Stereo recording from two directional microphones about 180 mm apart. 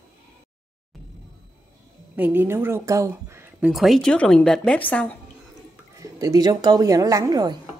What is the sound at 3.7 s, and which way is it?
A woman's voice, centre (ahead or behind).